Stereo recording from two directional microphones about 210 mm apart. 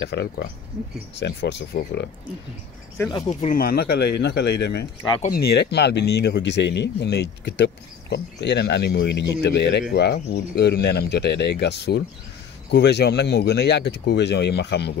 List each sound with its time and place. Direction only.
0.0 s speech: 55° left (ahead or behind)
3.1 s speech: 30° left (ahead or behind); by 15.0 s 55° left (ahead or behind)